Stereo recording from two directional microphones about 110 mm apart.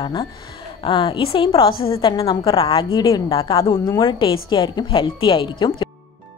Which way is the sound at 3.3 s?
55° left (ahead or behind).